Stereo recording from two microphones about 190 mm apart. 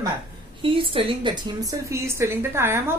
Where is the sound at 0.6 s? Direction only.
30° right (ahead or behind).